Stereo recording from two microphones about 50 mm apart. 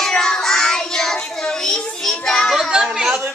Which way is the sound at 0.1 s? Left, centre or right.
Centre.